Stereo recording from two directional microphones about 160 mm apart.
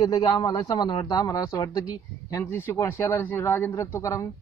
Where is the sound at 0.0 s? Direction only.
25° left (ahead or behind).